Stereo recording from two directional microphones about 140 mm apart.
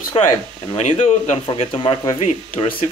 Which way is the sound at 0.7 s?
50° left (ahead or behind).